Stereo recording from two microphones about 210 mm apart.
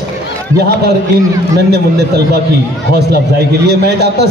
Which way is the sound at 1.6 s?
50° right (ahead or behind).